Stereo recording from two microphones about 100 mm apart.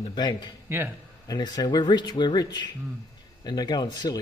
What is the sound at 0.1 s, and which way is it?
Speech, 50° left (ahead or behind).